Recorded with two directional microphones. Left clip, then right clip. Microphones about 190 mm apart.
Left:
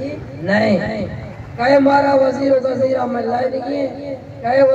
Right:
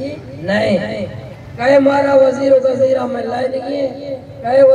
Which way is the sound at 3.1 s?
35° right (ahead or behind).